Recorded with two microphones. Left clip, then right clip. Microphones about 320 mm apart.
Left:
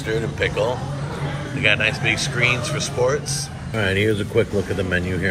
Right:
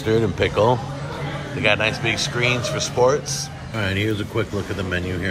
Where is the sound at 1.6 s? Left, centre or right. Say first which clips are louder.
Left 1 dB; centre.